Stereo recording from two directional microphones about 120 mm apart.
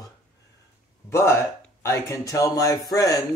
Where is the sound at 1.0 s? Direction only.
20° left (ahead or behind).